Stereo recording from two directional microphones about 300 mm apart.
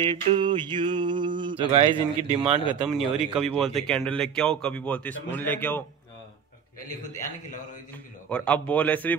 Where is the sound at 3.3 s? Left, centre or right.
Centre.